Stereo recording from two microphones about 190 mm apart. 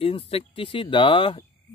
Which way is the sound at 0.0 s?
30° left (ahead or behind).